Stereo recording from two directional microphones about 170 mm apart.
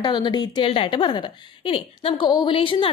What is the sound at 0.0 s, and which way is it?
A woman's voice, 25° left (ahead or behind).